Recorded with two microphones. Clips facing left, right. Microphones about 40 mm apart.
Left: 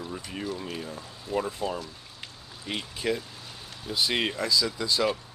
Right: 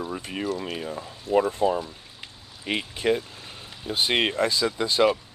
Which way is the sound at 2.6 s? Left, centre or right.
Right.